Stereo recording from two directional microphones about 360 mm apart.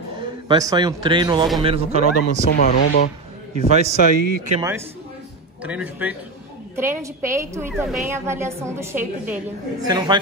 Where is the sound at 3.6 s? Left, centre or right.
Centre.